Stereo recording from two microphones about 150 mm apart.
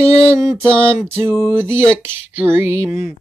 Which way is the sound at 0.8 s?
15° right (ahead or behind).